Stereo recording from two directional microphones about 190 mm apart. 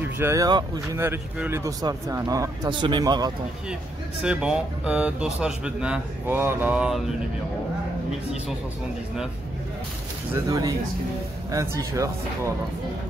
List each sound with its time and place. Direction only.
0.0 s speech: 15° right (ahead or behind)
4.2 s speech: 5° right (ahead or behind)
10.3 s speech: 20° right (ahead or behind)